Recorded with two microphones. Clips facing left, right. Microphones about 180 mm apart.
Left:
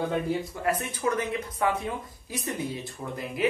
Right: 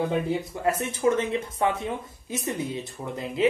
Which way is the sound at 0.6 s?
25° right (ahead or behind).